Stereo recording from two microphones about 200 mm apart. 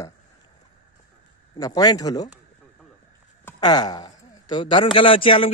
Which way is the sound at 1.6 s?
20° left (ahead or behind).